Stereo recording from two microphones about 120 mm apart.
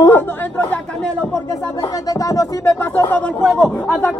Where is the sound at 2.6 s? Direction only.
15° left (ahead or behind).